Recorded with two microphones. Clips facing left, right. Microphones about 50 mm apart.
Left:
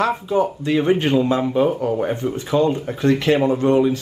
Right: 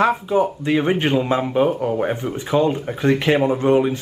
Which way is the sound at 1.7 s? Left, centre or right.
Centre.